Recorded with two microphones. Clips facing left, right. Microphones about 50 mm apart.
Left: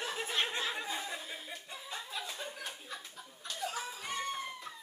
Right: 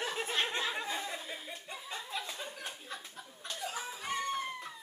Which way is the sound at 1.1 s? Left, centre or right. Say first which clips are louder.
Right 1 dB; centre.